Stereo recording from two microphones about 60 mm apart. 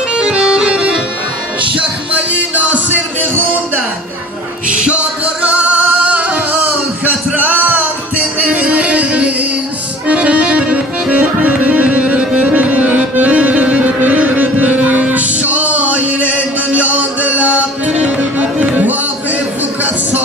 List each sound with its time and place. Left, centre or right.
0.1 s music: centre
4.6 s music: right
19.8 s a sound: right